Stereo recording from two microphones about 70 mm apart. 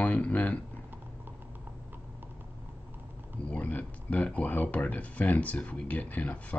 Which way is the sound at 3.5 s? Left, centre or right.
Left.